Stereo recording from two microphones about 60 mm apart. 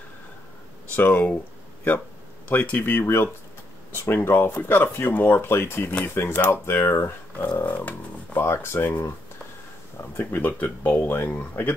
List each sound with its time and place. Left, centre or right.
0.9 s speech: left
2.5 s speech: left
2.8 s speech: left
7.4 s speech: left
8.4 s speech: left
10.1 s speech: left